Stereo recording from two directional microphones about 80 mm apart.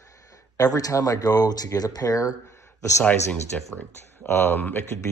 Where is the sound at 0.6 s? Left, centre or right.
Left.